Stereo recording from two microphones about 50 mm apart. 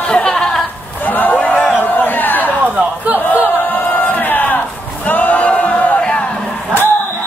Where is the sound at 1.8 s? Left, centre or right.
Left.